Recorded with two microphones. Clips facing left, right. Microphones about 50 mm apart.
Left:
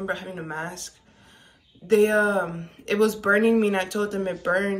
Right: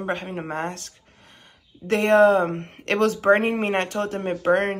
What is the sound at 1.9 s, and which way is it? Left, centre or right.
Speech, right.